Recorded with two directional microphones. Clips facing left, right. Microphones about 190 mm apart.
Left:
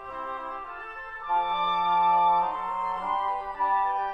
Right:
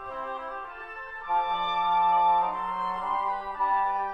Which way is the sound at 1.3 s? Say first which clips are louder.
Left 1 dB; centre (ahead or behind).